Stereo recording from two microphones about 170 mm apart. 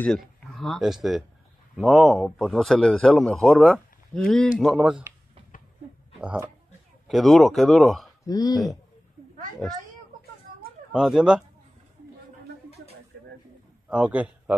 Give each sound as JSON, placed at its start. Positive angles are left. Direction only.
{"t": 0.4, "sound": "a man's voice", "side_deg": 0}
{"t": 6.1, "sound": "a man's voice", "side_deg": -5}
{"t": 8.3, "sound": "speech", "side_deg": 25}
{"t": 10.9, "sound": "a man's voice", "side_deg": -5}
{"t": 13.8, "sound": "a man's voice", "side_deg": -5}